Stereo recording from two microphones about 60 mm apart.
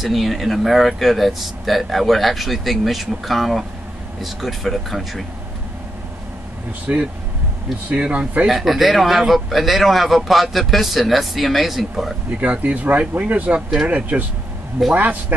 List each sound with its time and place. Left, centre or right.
0.0 s speech: centre
6.9 s speech: right
7.9 s speech: right
8.5 s speech: centre
12.4 s speech: right